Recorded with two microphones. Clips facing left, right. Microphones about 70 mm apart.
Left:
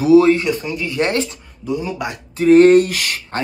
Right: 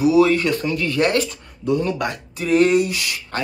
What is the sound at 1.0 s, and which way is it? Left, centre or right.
Speech, left.